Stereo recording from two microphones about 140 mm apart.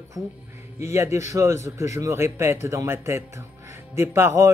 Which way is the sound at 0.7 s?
20° right (ahead or behind).